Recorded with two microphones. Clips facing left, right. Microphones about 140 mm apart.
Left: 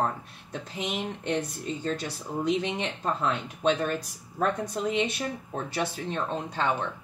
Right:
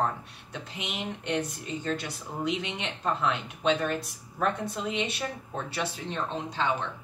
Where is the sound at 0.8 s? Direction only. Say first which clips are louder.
Left 4 dB; 35° left (ahead or behind).